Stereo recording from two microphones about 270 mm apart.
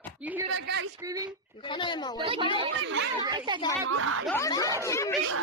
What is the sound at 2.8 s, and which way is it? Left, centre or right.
Speech, right.